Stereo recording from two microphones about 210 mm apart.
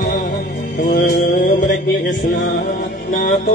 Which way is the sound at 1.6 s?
55° left (ahead or behind).